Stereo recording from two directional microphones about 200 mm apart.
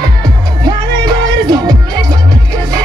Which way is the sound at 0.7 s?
20° right (ahead or behind).